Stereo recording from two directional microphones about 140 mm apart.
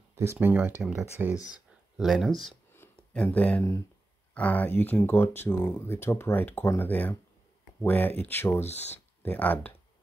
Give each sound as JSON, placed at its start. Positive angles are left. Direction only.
{"t": 0.1, "sound": "speech", "side_deg": -20}
{"t": 2.0, "sound": "speech", "side_deg": 0}
{"t": 2.7, "sound": "a sound", "side_deg": 15}
{"t": 3.2, "sound": "speech", "side_deg": 10}
{"t": 8.6, "sound": "speech", "side_deg": 50}
{"t": 9.2, "sound": "speech", "side_deg": 15}